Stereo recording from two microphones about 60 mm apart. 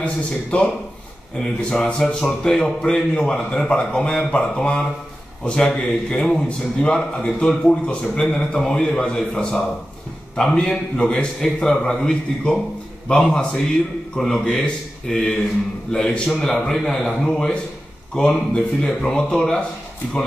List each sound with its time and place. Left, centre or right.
0.0 s a man's voice: centre